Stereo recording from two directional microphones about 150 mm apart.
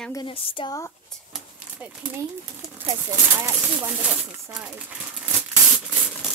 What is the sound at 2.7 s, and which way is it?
Speech, 20° right (ahead or behind).